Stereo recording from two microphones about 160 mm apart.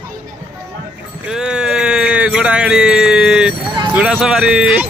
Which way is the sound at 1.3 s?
5° right (ahead or behind).